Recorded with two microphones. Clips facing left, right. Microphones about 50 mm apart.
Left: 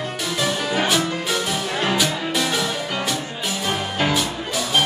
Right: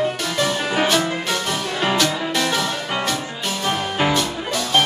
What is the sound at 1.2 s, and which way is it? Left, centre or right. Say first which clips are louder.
Music: even; centre.